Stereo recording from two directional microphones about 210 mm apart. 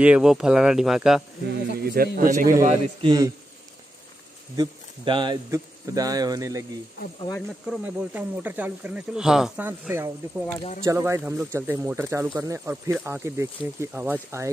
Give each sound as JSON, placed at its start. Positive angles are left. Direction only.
{"t": 0.0, "sound": "speech", "side_deg": -5}
{"t": 1.8, "sound": "a man's voice", "side_deg": -45}
{"t": 4.6, "sound": "speech", "side_deg": -20}
{"t": 7.2, "sound": "speech", "side_deg": 15}
{"t": 7.7, "sound": "speech", "side_deg": -10}